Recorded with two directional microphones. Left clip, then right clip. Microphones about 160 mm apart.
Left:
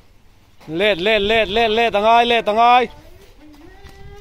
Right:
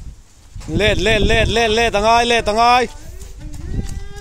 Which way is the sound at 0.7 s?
20° right (ahead or behind).